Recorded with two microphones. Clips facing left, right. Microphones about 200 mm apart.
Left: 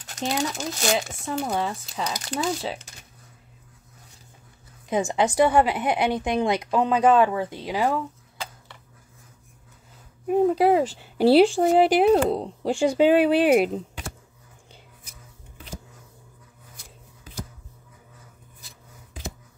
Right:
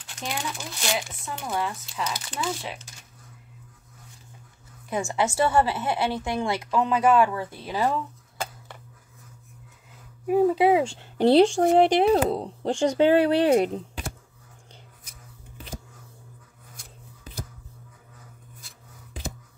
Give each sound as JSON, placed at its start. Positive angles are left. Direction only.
{"t": 0.3, "sound": "speech", "side_deg": 40}
{"t": 4.8, "sound": "a woman's voice", "side_deg": 20}
{"t": 10.2, "sound": "speech", "side_deg": -5}